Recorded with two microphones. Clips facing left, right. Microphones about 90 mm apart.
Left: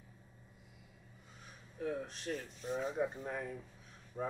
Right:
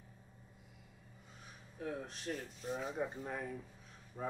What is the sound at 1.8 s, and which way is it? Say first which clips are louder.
Speech: left 3 dB; centre (ahead or behind).